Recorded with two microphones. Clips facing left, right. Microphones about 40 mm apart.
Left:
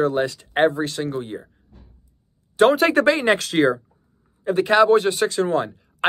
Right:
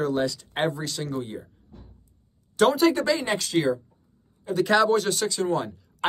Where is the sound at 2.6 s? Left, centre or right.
Left.